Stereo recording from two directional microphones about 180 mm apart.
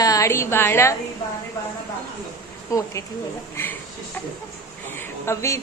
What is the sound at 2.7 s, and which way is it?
Speech, 15° left (ahead or behind).